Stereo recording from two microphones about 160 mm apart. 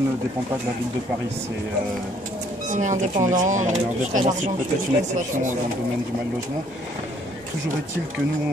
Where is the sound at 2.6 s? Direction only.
50° right (ahead or behind).